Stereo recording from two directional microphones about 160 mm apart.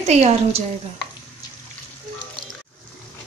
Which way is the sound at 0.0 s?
40° right (ahead or behind).